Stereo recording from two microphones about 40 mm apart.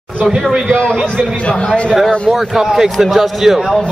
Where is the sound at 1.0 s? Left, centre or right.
Left.